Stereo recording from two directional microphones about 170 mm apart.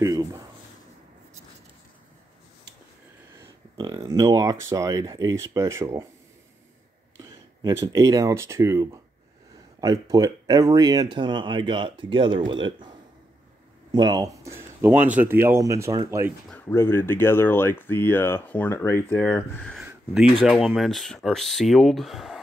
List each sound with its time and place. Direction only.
0.0 s speech: 20° right (ahead or behind)
3.3 s speech: 25° right (ahead or behind)
7.2 s speech: 20° right (ahead or behind)
13.9 s speech: 20° right (ahead or behind)
16.4 s speech: 10° left (ahead or behind)
19.8 s speech: 5° right (ahead or behind)